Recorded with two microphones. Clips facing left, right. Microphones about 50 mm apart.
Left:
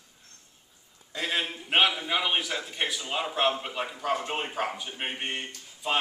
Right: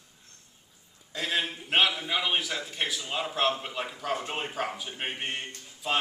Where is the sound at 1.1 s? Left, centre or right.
Centre.